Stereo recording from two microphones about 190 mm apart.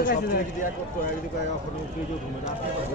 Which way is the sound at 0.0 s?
50° left (ahead or behind).